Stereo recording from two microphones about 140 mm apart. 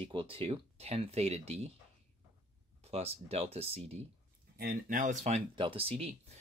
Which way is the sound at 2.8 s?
45° right (ahead or behind).